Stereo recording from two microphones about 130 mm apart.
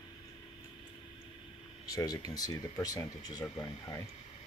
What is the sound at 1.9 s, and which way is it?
Speech, 30° left (ahead or behind).